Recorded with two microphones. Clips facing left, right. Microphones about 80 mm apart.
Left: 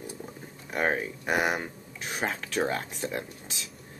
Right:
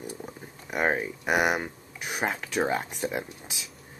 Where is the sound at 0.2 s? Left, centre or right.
Centre.